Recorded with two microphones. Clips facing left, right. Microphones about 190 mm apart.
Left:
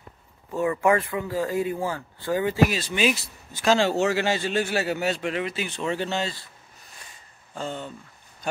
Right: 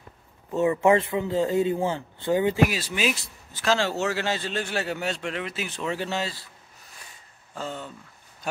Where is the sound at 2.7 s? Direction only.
5° right (ahead or behind).